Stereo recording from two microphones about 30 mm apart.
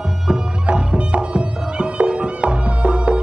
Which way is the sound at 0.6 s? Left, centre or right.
Right.